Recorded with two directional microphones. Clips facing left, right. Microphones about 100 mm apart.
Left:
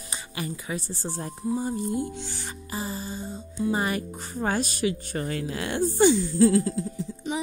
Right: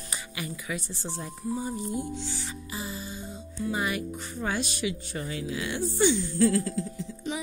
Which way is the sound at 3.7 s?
40° left (ahead or behind).